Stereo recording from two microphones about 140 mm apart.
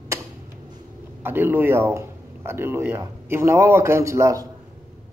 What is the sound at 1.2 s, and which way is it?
Speech, 15° right (ahead or behind).